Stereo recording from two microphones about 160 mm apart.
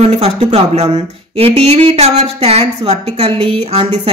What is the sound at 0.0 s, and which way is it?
Speech, 40° right (ahead or behind).